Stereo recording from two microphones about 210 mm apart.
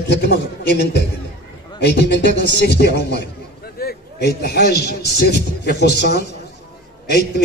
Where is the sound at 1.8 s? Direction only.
55° left (ahead or behind).